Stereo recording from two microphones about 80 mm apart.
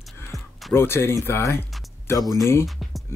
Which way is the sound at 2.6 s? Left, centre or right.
Centre.